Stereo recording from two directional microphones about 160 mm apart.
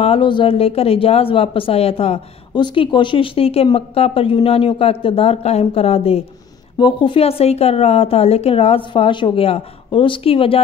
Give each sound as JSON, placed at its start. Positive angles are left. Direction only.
{"t": 0.0, "sound": "speech", "side_deg": 35}